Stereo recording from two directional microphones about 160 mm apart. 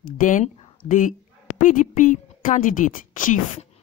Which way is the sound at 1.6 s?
55° left (ahead or behind).